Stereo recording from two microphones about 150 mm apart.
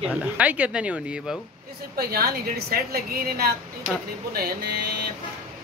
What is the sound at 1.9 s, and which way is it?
A woman's voice, 85° right.